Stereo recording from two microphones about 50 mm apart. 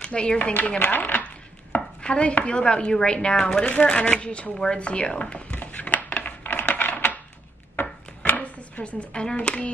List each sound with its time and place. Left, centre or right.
0.0 s speech: centre
0.4 s speech: left
2.0 s speech: left
3.8 s a sound: centre
6.8 s coin: left
8.4 s speech: left